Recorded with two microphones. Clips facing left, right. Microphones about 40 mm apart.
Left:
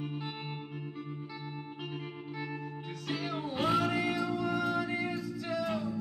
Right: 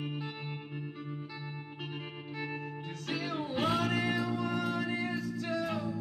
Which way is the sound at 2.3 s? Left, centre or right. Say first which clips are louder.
Right 2 dB; centre.